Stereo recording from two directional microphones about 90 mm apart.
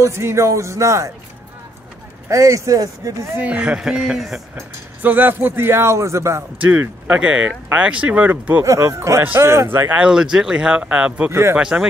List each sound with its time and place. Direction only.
0.0 s speech: 30° right (ahead or behind)
2.2 s speech: 35° right (ahead or behind)
3.3 s speech: 15° right (ahead or behind)
4.6 s speech: 20° right (ahead or behind)
6.6 s speech: 20° right (ahead or behind)
8.6 s speech: 35° right (ahead or behind)
9.9 s speech: 10° right (ahead or behind)